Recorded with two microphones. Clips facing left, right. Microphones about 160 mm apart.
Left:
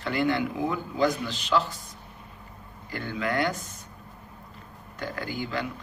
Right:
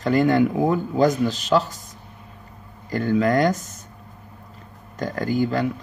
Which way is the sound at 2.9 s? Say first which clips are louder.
Right 10 dB; 45° right (ahead or behind).